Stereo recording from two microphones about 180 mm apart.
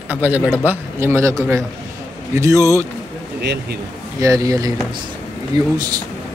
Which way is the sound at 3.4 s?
65° right (ahead or behind).